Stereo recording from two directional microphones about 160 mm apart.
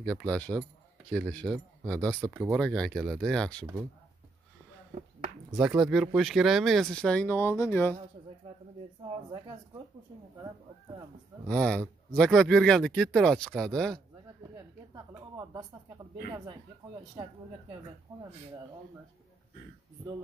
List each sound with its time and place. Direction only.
0.0 s speech: 5° left (ahead or behind)
5.6 s speech: 5° right (ahead or behind); by 7.9 s 15° left (ahead or behind)
11.4 s speech: 5° left (ahead or behind)
15.3 s speech: 25° right (ahead or behind)